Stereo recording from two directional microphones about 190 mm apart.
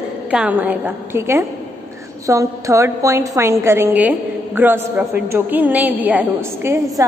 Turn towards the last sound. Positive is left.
turn(degrees=-15)  # may be behind; listen again after turning